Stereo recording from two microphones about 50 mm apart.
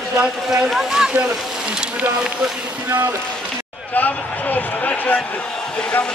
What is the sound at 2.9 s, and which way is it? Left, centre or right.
Speech, right.